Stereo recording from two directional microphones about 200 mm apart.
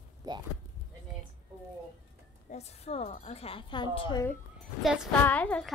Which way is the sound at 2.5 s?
30° left (ahead or behind).